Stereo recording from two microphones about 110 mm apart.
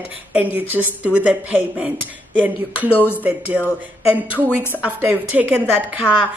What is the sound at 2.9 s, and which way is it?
Speech, 20° left (ahead or behind).